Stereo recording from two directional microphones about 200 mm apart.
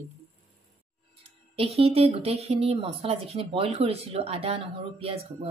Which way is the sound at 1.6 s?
30° right (ahead or behind).